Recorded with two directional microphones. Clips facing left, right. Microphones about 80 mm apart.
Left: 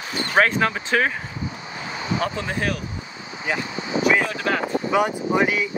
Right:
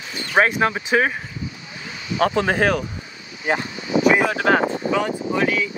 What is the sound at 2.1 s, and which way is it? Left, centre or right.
Speech, right.